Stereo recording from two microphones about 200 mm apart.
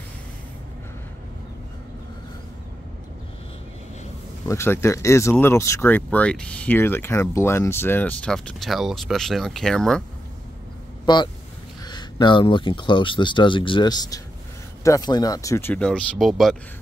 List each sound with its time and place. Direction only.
4.5 s speech: 15° left (ahead or behind)
11.1 s speech: 20° left (ahead or behind); by 16.5 s centre (ahead or behind)